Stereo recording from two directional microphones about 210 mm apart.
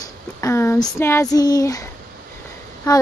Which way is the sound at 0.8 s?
10° left (ahead or behind).